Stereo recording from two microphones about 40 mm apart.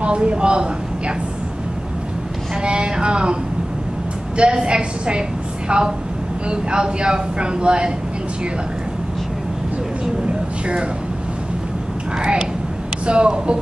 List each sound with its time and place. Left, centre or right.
0.0 s speech: right
2.6 s speech: right
4.4 s speech: right
10.2 s a sound: right
12.2 s speech: right